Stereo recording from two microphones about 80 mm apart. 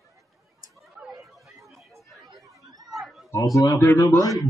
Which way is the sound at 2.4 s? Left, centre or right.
Right.